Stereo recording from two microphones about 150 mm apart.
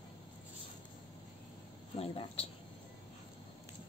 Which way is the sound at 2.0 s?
40° left (ahead or behind).